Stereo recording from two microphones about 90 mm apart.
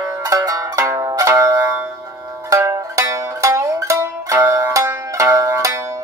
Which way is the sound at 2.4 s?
35° right (ahead or behind).